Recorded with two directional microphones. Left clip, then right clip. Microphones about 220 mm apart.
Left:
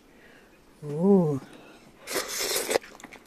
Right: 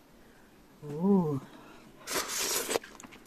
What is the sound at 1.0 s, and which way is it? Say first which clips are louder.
Speech: left 7 dB; 10° left (ahead or behind).